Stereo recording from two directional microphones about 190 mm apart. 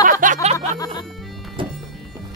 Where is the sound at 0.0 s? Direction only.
45° right (ahead or behind); by 1.7 s 25° right (ahead or behind).